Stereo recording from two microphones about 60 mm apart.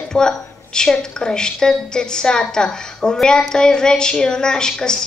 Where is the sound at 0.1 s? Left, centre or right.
Centre.